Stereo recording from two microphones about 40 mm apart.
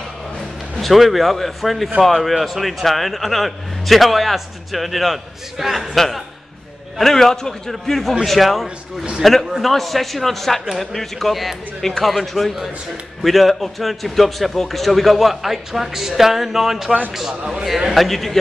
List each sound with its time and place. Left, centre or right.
0.7 s a man's voice: centre
8.6 s speech: right
9.2 s a man's voice: centre